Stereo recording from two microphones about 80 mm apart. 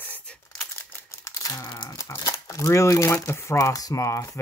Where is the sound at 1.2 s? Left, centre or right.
Left.